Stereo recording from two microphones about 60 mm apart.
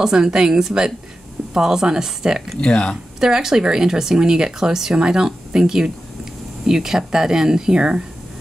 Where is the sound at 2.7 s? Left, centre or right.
Centre.